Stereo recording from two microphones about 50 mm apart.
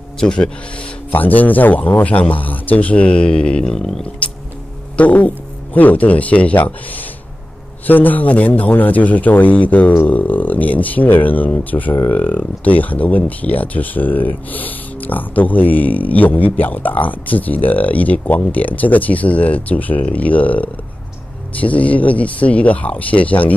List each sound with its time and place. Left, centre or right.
0.2 s speech: centre
1.1 s speech: left; by 4.0 s centre
4.2 s music: left
4.9 s speech: left